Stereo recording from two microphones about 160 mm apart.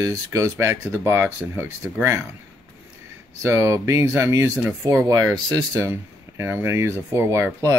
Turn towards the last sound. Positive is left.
turn(degrees=-15)  # may be behind; listen again after turning